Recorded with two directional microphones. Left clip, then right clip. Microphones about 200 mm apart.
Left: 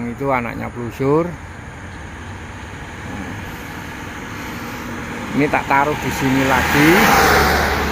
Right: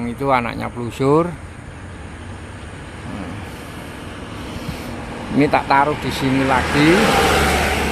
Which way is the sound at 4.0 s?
40° left (ahead or behind).